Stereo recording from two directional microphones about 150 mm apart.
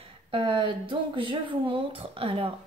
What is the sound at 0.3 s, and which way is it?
A woman's voice, 35° right (ahead or behind).